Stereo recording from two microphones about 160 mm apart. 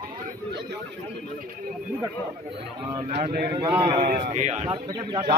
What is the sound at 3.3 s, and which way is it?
Speech, 75° right (ahead or behind).